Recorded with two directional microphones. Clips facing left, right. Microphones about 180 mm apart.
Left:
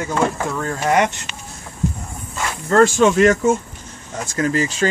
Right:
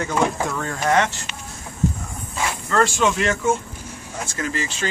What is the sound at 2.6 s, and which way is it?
Speech, 45° left (ahead or behind).